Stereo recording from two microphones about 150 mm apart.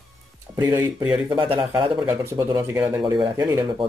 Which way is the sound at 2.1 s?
20° right (ahead or behind).